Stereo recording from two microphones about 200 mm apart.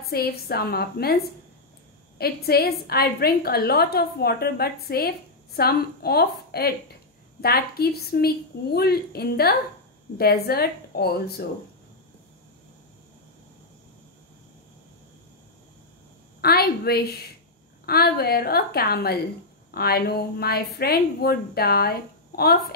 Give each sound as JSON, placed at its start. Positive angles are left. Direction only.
{"t": 0.0, "sound": "a woman's voice", "side_deg": 50}
{"t": 2.1, "sound": "a woman's voice", "side_deg": 50}
{"t": 16.3, "sound": "a woman's voice", "side_deg": 50}